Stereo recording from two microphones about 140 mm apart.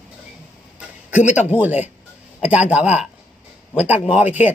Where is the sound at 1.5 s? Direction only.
10° right (ahead or behind).